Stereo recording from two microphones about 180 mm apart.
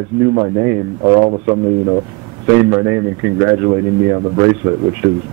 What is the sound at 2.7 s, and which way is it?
A man's voice, 20° right (ahead or behind).